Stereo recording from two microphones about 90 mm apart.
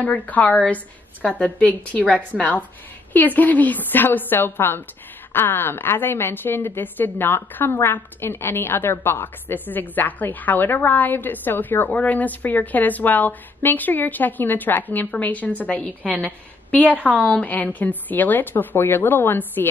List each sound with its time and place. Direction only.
0.0 s a woman's voice: 15° left (ahead or behind)